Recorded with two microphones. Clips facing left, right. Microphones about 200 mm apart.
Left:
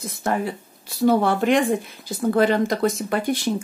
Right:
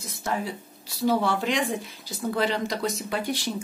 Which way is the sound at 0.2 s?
55° left (ahead or behind).